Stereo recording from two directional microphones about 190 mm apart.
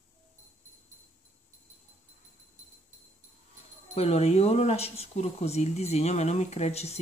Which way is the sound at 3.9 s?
35° left (ahead or behind).